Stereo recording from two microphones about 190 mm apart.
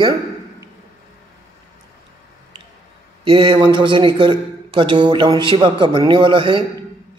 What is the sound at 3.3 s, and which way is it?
A man's voice, 30° right (ahead or behind).